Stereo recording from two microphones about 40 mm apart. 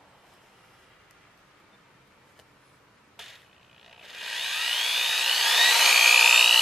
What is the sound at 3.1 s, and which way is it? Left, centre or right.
Mechanisms, centre.